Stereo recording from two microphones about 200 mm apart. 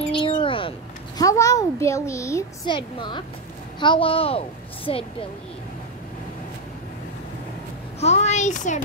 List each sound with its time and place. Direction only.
0.0 s a child's voice: 25° left (ahead or behind)
8.0 s a child's voice: 35° left (ahead or behind)